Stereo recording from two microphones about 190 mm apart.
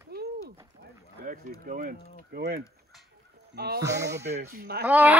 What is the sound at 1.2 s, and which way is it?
Speech, 50° right (ahead or behind).